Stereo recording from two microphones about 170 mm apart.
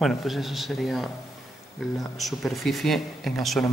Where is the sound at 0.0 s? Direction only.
Centre (ahead or behind).